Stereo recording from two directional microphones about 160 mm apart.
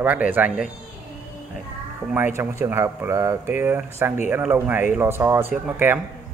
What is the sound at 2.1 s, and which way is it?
Speech, 15° right (ahead or behind).